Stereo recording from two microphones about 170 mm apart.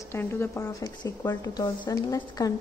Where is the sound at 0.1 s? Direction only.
15° left (ahead or behind).